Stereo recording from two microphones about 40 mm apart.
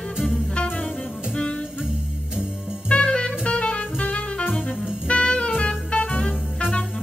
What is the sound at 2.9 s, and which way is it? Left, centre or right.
Music, left.